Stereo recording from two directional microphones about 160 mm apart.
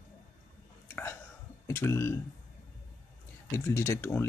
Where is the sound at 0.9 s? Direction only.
15° left (ahead or behind).